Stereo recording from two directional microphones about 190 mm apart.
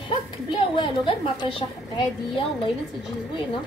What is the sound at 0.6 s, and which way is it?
A woman's voice, 25° left (ahead or behind).